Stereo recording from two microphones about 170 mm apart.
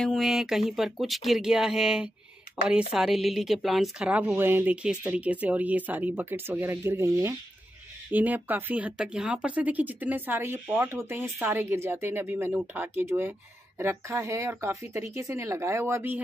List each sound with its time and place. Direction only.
0.0 s speech: centre (ahead or behind)